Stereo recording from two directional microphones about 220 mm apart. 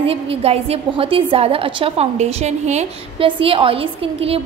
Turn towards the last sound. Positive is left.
turn(degrees=-25)  # may be behind; listen again after turning